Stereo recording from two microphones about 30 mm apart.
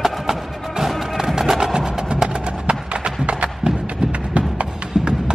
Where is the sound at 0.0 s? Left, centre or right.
Centre.